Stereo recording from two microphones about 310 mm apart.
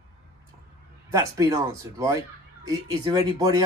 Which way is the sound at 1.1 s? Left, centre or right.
Centre.